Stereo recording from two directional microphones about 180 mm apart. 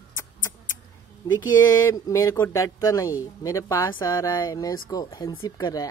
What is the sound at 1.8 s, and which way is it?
Speech, 20° left (ahead or behind).